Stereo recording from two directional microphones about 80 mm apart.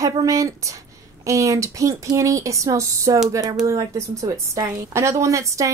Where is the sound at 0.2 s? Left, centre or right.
Right.